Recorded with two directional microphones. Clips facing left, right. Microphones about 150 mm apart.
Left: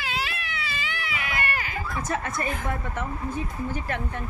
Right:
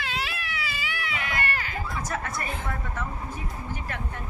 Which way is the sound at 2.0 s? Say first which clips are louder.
Left 5 dB; 25° left (ahead or behind).